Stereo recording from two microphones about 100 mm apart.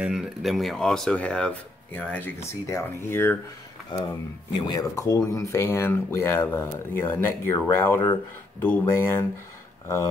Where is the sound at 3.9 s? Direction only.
50° left (ahead or behind).